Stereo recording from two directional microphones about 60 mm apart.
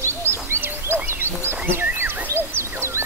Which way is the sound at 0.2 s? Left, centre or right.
Right.